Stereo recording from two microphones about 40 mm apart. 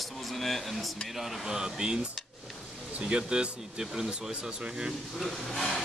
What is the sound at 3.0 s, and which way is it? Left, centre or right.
Speech, right.